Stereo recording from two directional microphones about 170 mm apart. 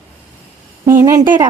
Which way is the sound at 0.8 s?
15° right (ahead or behind).